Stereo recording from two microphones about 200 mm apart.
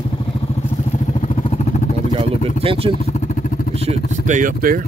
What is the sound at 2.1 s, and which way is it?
Vehicle, 30° right (ahead or behind).